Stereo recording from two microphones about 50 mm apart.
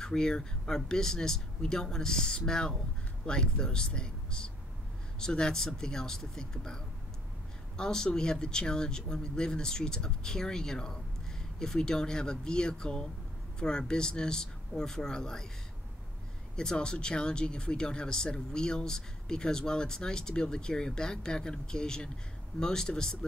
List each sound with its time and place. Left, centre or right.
0.0 s speech: centre
16.5 s speech: centre